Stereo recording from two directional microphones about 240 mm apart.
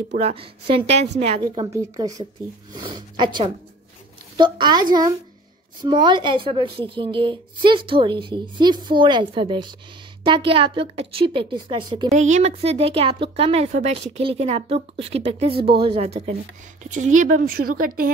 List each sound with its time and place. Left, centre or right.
0.1 s a woman's voice: right
4.4 s a woman's voice: centre; by 18.1 s right